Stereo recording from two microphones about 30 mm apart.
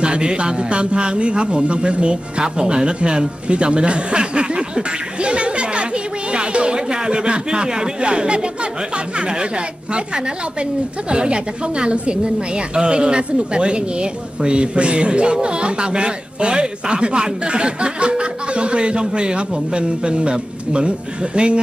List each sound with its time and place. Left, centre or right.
0.0 s speech: right
11.1 s speech: right